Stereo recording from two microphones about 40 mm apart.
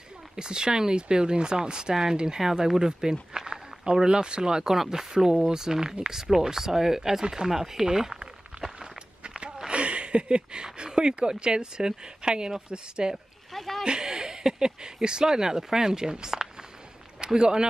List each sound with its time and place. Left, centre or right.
0.4 s speech: centre
9.2 s a sound: right
9.7 s speech: right
13.5 s speech: centre
13.8 s speech: centre